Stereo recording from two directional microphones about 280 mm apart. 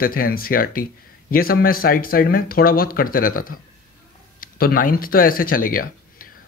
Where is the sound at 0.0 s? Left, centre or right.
Left.